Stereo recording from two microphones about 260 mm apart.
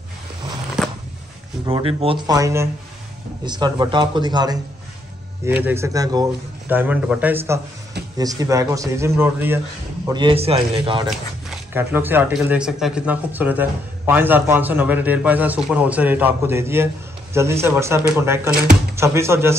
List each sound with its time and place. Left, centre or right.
0.8 s a sound: centre
1.7 s speech: right
11.7 s speech: centre